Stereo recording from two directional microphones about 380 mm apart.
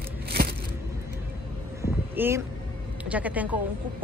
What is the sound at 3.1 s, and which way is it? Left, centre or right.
Speech, centre.